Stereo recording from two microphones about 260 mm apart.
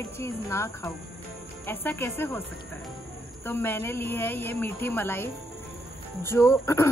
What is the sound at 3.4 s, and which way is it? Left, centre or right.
Speech, centre.